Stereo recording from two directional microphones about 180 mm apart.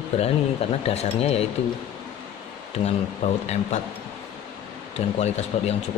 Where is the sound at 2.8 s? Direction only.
40° left (ahead or behind).